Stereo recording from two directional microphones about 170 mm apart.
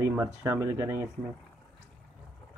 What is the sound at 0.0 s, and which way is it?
Speech, 15° right (ahead or behind).